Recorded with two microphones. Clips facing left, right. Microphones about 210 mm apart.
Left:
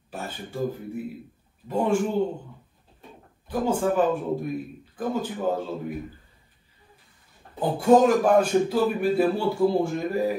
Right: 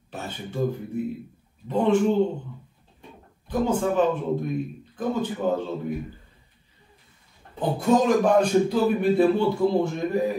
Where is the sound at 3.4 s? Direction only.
5° left (ahead or behind).